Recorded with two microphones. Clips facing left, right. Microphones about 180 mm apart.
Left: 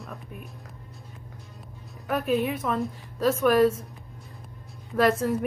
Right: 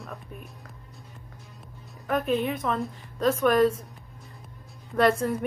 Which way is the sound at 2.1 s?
5° left (ahead or behind).